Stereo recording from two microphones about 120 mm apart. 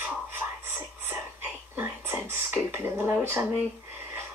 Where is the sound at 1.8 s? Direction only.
20° right (ahead or behind).